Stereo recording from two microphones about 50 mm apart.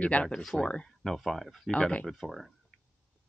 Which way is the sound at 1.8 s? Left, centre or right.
Left.